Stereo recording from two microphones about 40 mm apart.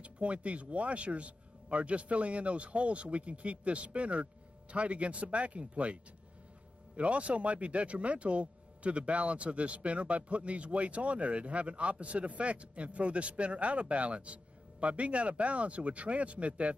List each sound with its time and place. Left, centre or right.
0.0 s speech: right
7.0 s speech: right